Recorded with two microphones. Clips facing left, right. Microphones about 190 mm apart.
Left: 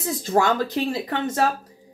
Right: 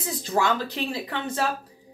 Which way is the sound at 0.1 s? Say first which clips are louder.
Left 4 dB; 45° left (ahead or behind).